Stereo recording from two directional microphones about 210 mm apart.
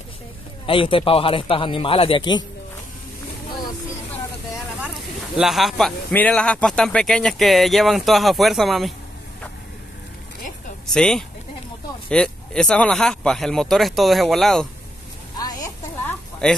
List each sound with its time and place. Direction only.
0.7 s a man's voice: 25° left (ahead or behind)
5.4 s speech: centre (ahead or behind)
10.9 s speech: 5° left (ahead or behind)
15.3 s a sound: 20° left (ahead or behind)
16.4 s speech: 5° left (ahead or behind)